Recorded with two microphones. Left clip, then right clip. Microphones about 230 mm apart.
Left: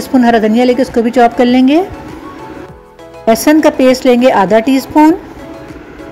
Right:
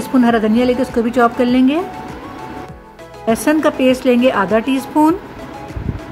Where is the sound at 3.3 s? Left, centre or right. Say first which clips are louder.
Left 6 dB; centre.